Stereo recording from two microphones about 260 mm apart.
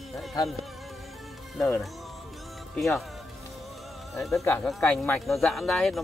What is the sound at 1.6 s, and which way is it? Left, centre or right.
Speech, centre.